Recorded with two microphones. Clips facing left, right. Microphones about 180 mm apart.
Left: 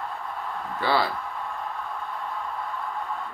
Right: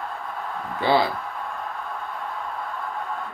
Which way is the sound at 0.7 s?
20° right (ahead or behind).